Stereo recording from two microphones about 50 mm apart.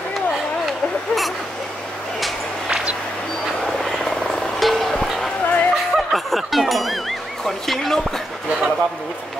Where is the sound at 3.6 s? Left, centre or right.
Centre.